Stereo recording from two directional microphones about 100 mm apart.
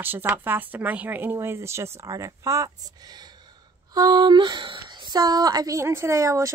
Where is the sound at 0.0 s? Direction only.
20° right (ahead or behind).